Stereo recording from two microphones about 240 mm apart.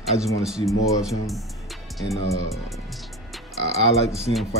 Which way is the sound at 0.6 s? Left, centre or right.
Centre.